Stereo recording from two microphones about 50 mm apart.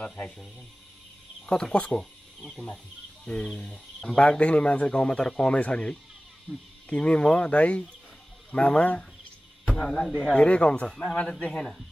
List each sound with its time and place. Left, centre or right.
0.0 s speech: left
1.4 s speech: centre
1.9 s a man's voice: centre
4.2 s a man's voice: left
10.9 s a man's voice: centre
11.1 s speech: left